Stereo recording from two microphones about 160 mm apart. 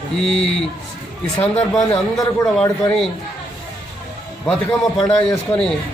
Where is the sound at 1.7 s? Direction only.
20° left (ahead or behind).